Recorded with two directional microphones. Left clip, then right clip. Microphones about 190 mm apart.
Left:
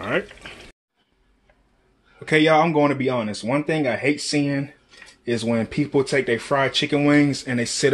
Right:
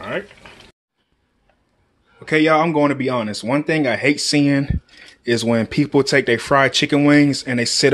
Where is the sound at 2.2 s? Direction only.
5° right (ahead or behind).